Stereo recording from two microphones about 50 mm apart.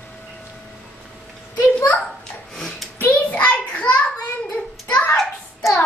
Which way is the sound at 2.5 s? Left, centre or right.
Centre.